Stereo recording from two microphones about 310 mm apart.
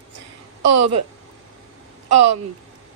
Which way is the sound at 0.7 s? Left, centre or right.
Right.